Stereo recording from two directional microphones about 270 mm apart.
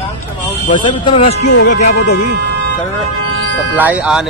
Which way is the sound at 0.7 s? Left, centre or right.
Centre.